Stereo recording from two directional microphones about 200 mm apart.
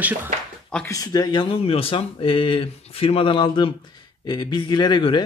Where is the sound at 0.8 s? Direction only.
15° left (ahead or behind).